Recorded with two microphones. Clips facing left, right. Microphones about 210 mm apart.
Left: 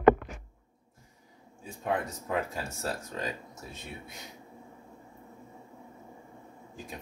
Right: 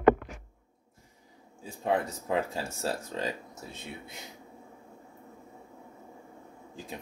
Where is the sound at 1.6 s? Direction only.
30° right (ahead or behind).